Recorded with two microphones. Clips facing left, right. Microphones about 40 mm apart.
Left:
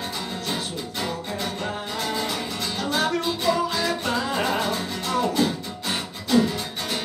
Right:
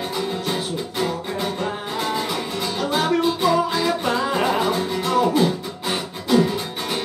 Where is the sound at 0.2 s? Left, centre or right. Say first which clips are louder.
Right 7 dB; centre.